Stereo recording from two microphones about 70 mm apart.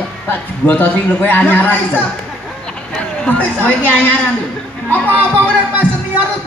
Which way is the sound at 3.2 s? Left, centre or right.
Left.